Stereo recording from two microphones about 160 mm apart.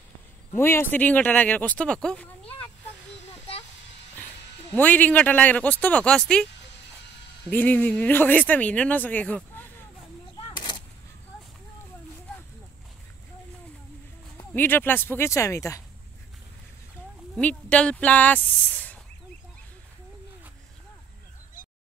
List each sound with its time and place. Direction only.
0.6 s speech: 15° left (ahead or behind)
4.7 s speech: 10° left (ahead or behind)
7.4 s speech: 10° left (ahead or behind)
10.3 s a sound: 25° left (ahead or behind)
14.5 s speech: 10° left (ahead or behind)
17.4 s speech: 10° left (ahead or behind)